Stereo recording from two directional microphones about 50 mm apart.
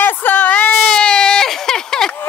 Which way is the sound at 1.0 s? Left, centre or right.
Centre.